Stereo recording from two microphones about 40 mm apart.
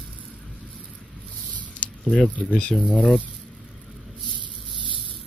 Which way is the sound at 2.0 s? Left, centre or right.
Left.